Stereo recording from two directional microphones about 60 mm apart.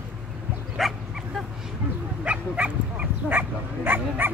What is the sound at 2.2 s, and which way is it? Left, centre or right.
Bow-wow, right.